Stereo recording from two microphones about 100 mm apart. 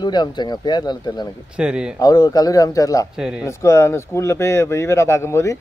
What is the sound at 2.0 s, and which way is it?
A man's voice, 40° left (ahead or behind).